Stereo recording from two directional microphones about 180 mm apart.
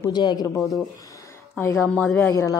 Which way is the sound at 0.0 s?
25° left (ahead or behind).